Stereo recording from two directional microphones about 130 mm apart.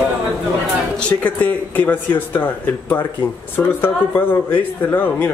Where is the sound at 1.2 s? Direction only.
10° left (ahead or behind).